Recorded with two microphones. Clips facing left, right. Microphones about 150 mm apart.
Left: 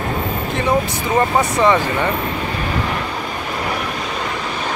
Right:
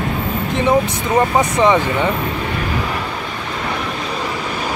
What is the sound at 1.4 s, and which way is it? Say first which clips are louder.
Speech: right 1 dB; 20° right (ahead or behind).